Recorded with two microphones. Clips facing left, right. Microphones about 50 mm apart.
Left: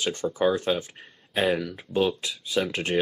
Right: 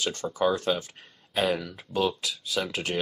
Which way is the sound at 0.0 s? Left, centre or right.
Centre.